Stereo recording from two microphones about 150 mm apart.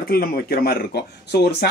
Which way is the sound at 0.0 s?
85° left.